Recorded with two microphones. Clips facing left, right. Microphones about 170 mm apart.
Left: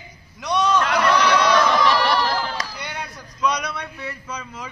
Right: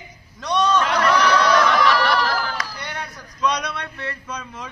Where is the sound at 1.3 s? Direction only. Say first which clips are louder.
Even; 10° left (ahead or behind).